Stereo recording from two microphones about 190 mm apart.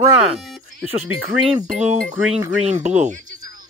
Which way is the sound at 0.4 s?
Centre (ahead or behind).